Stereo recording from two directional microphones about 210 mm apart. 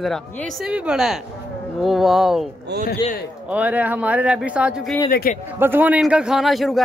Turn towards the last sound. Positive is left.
turn(degrees=0)  # may be behind; listen again after turning